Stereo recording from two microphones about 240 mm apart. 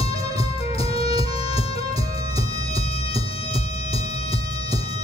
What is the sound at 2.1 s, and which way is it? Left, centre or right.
Music, left.